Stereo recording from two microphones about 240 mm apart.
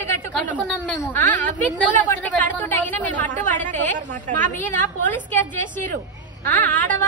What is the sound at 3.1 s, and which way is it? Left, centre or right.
A woman's voice, right.